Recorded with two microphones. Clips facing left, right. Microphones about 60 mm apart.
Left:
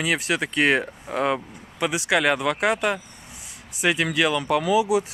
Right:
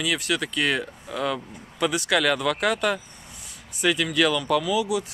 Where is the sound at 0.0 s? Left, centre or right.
Left.